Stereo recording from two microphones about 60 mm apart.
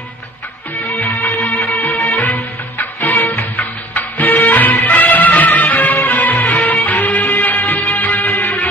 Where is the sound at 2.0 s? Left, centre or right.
Left.